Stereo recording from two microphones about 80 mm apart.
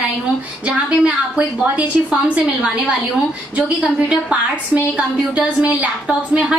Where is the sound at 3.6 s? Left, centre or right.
Centre.